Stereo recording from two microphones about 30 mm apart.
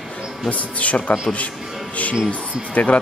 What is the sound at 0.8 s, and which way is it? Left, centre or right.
Speech, left.